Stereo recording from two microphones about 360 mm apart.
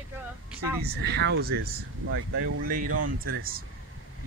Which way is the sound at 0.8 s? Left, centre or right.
Right.